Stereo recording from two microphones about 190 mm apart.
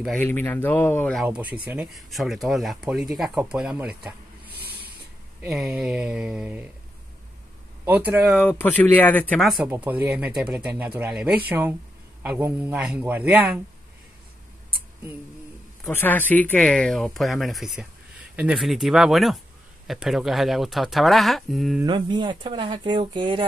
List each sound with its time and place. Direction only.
0.0 s speech: 5° left (ahead or behind)
1.2 s speech: 10° right (ahead or behind)
7.8 s speech: 10° right (ahead or behind); by 9.6 s 5° left (ahead or behind)
9.7 s a man's voice: 10° right (ahead or behind)
15.9 s speech: 10° left (ahead or behind)
21.8 s speech: 25° right (ahead or behind)